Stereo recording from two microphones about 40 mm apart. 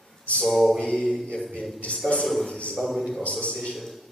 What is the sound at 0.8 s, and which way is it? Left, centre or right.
Mantra, centre.